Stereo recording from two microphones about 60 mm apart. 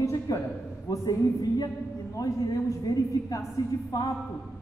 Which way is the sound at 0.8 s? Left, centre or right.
Left.